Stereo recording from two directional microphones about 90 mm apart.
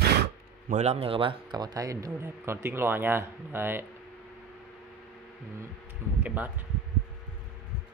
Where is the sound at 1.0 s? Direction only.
85° right.